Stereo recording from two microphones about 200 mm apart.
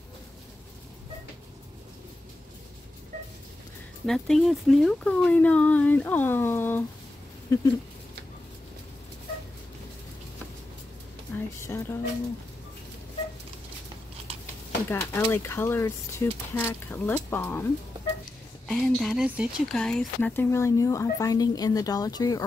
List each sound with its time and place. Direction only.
4.0 s speech: centre (ahead or behind)
11.3 s speech: 10° left (ahead or behind)
14.9 s speech: 10° left (ahead or behind)
18.7 s speech: centre (ahead or behind); by 22.4 s 20° left (ahead or behind)